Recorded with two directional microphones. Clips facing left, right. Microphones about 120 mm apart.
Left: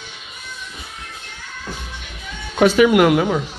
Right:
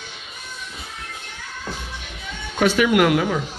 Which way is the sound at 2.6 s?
20° left (ahead or behind).